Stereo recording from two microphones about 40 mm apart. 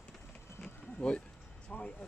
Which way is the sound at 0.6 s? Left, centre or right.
Left.